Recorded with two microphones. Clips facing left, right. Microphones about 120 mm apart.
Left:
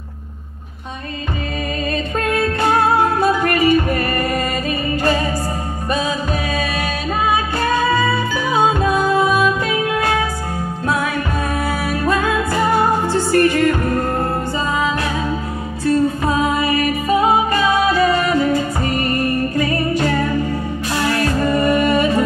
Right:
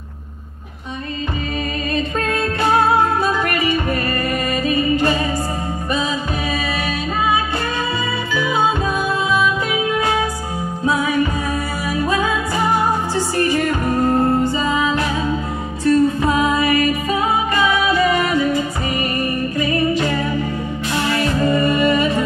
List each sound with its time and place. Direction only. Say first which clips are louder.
3.2 s music: left 3 dB; 40° left (ahead or behind)
13.3 s music: left 5 dB; 60° left (ahead or behind)
14.0 s music: right 4 dB; 15° right (ahead or behind)
15.8 s music: right 2 dB; 30° left (ahead or behind)
18.2 s music: left 1 dB; 45° left (ahead or behind)
18.9 s music: left 3 dB; 15° right (ahead or behind)
19.9 s a capella: left 1 dB; 45° left (ahead or behind)
21.5 s music: left 3 dB; 45° left (ahead or behind)